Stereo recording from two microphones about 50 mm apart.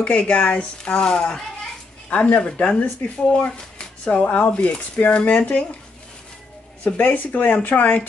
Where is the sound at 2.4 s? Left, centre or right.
Left.